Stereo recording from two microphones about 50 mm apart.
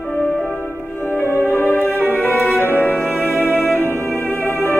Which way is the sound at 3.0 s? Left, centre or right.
Right.